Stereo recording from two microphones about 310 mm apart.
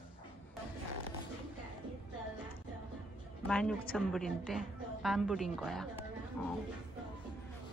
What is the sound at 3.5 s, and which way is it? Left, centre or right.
A woman's voice, centre.